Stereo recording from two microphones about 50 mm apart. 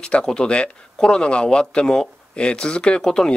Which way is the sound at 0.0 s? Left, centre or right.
Centre.